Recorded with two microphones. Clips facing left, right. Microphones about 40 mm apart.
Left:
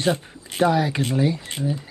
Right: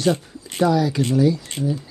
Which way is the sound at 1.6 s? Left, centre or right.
Centre.